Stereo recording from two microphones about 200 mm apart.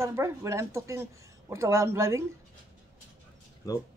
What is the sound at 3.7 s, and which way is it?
Speech, 15° left (ahead or behind).